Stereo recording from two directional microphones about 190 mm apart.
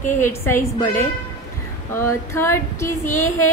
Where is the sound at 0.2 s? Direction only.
15° left (ahead or behind).